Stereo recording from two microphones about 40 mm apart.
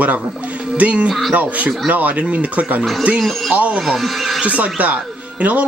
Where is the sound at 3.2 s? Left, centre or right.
Centre.